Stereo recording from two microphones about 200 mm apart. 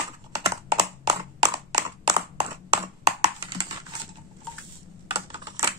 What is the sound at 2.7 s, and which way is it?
Computer keyboard, 20° right (ahead or behind).